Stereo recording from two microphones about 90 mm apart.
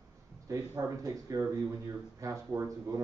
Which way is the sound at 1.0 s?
40° right (ahead or behind).